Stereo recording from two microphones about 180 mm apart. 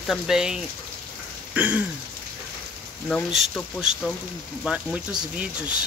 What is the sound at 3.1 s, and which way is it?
Speech, 5° left (ahead or behind).